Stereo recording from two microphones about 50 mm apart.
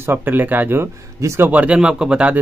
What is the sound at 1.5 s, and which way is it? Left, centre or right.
Speech, right.